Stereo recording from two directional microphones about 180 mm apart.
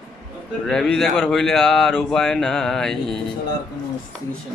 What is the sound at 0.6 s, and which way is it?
Speech, centre (ahead or behind).